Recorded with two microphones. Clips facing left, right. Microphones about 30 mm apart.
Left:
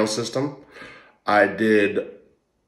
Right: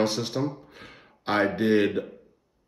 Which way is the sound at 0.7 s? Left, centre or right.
Left.